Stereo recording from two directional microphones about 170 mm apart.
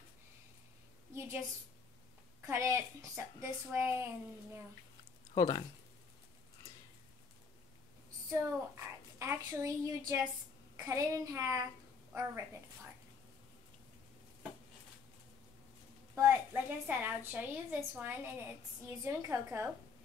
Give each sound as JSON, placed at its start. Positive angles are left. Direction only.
{"t": 1.1, "sound": "a woman's voice", "side_deg": -15}
{"t": 2.4, "sound": "a woman's voice", "side_deg": -15}
{"t": 5.3, "sound": "speech", "side_deg": 25}
{"t": 8.3, "sound": "a woman's voice", "side_deg": -15}
{"t": 16.2, "sound": "a woman's voice", "side_deg": -15}